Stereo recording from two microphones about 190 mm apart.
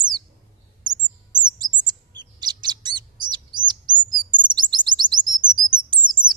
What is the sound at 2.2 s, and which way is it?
Chirp, 20° right (ahead or behind).